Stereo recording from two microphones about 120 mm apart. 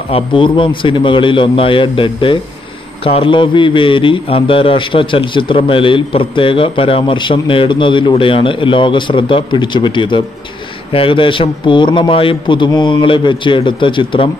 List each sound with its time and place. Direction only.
0.1 s a man's voice: 45° left (ahead or behind)